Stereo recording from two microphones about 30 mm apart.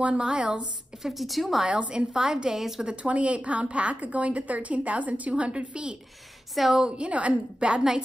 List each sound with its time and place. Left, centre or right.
0.0 s a woman's voice: right
1.0 s speech: centre
1.7 s a woman's voice: right
2.1 s a woman's voice: right
3.0 s a woman's voice: right
5.3 s a woman's voice: right
6.5 s speech: centre
6.9 s a woman's voice: right
7.7 s a woman's voice: right